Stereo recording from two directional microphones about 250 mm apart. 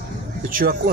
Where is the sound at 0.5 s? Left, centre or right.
Right.